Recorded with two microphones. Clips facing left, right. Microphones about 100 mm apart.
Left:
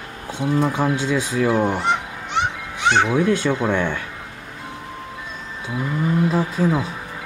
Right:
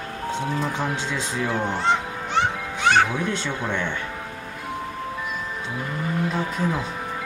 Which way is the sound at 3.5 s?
45° left (ahead or behind).